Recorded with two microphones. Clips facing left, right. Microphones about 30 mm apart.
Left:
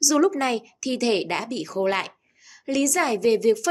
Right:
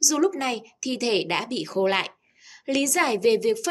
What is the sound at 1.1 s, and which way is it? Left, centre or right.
A woman's voice, centre.